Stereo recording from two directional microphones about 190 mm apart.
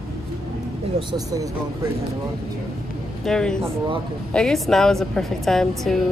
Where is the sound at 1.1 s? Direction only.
20° right (ahead or behind).